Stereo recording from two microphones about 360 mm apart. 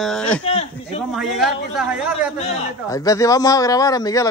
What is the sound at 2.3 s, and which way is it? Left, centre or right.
A man's voice, centre.